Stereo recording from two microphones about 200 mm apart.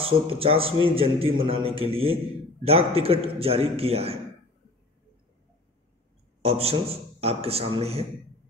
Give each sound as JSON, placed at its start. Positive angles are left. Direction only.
{"t": 0.0, "sound": "a man's voice", "side_deg": -30}
{"t": 6.4, "sound": "a man's voice", "side_deg": -30}